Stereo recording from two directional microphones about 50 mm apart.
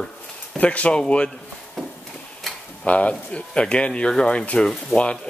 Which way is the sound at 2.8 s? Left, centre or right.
Left.